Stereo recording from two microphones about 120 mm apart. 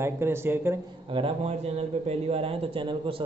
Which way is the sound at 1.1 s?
50° right (ahead or behind).